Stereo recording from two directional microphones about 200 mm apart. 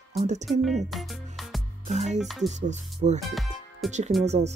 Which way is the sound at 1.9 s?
35° right (ahead or behind).